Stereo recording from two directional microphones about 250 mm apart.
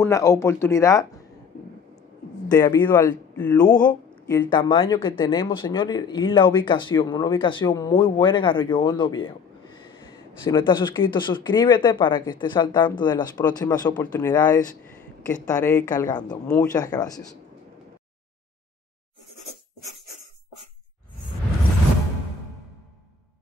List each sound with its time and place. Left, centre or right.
0.0 s speech: centre
2.5 s speech: centre
4.4 s speech: centre
10.5 s speech: centre